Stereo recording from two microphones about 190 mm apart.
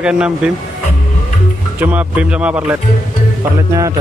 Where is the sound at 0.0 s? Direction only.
5° right (ahead or behind).